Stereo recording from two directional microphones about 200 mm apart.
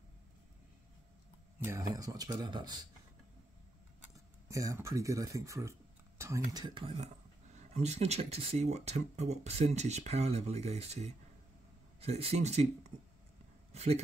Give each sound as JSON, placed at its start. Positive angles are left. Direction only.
{"t": 1.6, "sound": "speech", "side_deg": -15}
{"t": 4.5, "sound": "speech", "side_deg": -15}
{"t": 13.7, "sound": "speech", "side_deg": -30}